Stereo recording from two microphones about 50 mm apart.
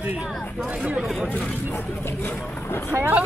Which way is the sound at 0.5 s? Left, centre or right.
Right.